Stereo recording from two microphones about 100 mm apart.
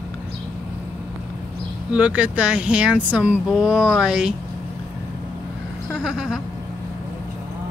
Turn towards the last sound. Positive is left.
turn(degrees=-5)  # may be behind; listen again after turning